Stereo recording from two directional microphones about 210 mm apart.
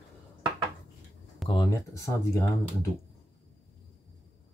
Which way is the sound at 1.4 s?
20° left (ahead or behind).